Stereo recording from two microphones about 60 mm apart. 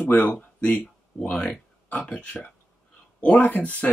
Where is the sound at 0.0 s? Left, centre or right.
Left.